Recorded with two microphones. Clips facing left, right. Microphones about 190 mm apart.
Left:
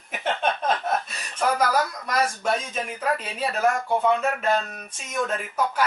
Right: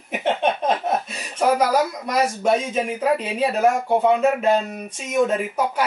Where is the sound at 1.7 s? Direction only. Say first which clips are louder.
Right 4 dB; 15° right (ahead or behind).